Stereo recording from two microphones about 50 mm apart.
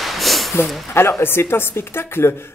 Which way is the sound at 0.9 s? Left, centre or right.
Left.